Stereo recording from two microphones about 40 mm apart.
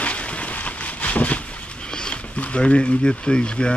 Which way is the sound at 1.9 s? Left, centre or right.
Left.